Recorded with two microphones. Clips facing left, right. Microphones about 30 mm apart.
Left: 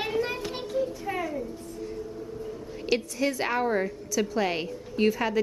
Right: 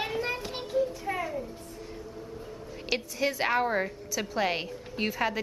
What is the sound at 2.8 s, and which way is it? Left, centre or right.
A woman's voice, centre.